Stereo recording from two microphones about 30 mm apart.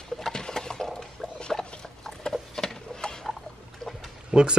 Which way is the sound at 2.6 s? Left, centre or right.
Centre.